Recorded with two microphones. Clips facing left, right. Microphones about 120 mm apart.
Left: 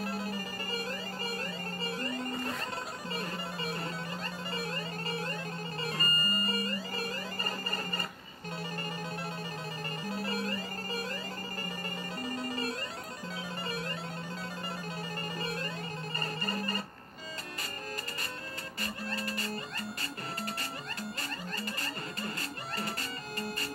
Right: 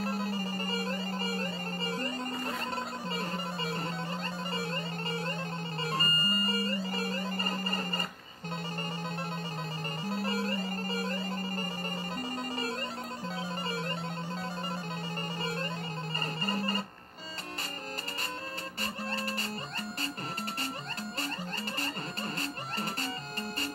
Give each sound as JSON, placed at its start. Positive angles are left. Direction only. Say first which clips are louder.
{"t": 0.3, "sound": "music", "louder": "right 4 dB", "side_deg": -25}
{"t": 18.8, "sound": "music", "louder": "right 1 dB", "side_deg": -30}